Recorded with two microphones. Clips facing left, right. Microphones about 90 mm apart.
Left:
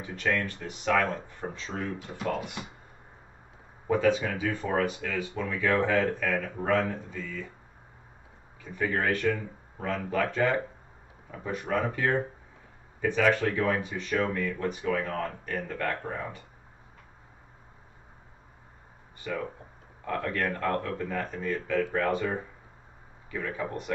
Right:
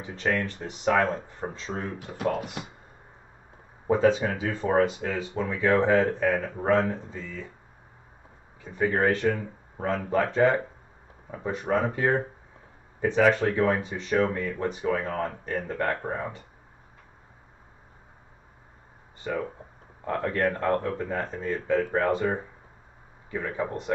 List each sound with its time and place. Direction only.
0.0 s speech: 30° right (ahead or behind)
3.8 s speech: 30° right (ahead or behind)
8.6 s speech: 30° right (ahead or behind)
19.1 s a sound: 30° right (ahead or behind)
20.1 s speech: 30° right (ahead or behind)